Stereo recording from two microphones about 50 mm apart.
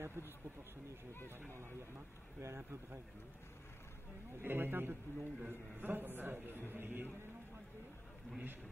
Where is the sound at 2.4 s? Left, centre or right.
Right.